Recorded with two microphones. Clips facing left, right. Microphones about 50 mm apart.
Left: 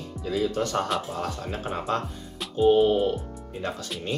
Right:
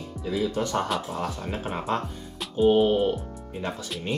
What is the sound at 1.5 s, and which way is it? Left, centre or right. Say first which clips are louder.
Speech: even; centre.